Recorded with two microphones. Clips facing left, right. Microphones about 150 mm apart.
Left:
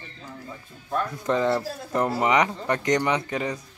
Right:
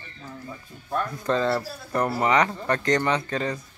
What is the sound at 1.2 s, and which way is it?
Speech, 15° left (ahead or behind).